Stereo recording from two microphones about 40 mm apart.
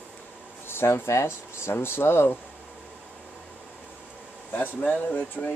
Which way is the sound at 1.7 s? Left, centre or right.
Left.